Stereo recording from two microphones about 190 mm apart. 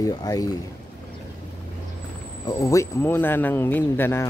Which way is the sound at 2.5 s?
15° left (ahead or behind).